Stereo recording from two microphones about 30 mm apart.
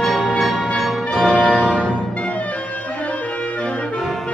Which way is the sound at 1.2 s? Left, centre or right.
Centre.